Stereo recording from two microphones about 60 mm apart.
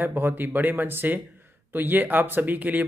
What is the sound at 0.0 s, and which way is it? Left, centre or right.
Speech, right.